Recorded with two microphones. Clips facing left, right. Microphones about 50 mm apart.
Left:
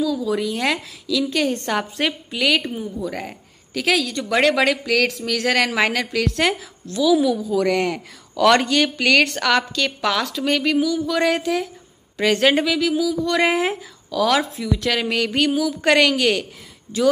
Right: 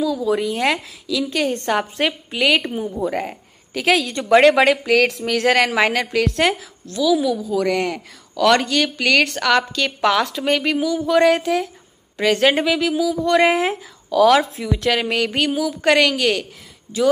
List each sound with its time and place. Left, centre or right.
0.0 s speech: right
1.2 s a woman's voice: centre
13.4 s a woman's voice: centre